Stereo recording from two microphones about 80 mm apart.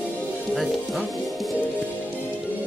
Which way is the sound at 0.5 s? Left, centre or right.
Centre.